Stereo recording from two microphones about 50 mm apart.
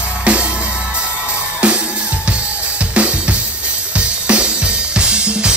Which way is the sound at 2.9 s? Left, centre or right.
Right.